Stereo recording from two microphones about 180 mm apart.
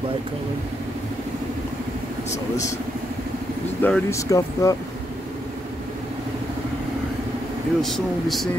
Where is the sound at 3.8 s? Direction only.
10° left (ahead or behind).